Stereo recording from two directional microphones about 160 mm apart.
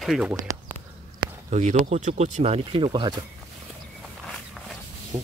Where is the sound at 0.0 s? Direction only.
5° right (ahead or behind).